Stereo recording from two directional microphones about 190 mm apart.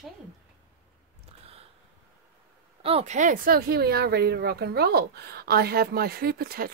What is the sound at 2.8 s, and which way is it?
Speech, 35° right (ahead or behind).